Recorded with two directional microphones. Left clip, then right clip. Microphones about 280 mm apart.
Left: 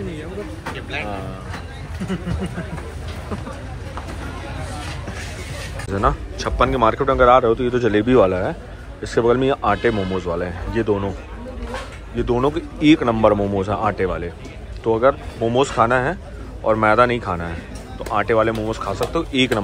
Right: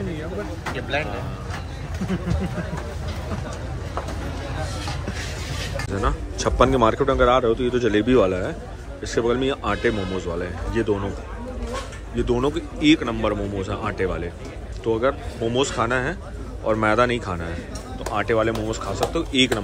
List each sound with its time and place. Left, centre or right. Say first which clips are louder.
0.7 s speech: right 4 dB; right
5.9 s a man's voice: left 8 dB; centre
12.2 s a man's voice: left 3 dB; centre